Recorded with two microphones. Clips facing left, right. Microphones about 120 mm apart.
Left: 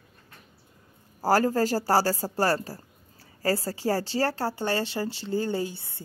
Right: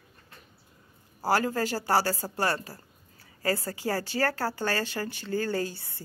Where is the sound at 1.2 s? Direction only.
40° left (ahead or behind).